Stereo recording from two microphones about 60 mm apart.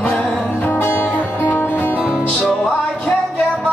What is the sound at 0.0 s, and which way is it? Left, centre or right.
Music, left.